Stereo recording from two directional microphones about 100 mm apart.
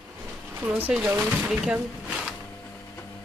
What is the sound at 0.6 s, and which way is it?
Speech, 15° right (ahead or behind).